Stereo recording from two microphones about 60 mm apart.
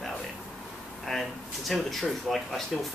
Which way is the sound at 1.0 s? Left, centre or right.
Centre.